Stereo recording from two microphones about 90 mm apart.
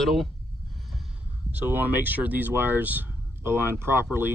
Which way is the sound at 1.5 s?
20° right (ahead or behind).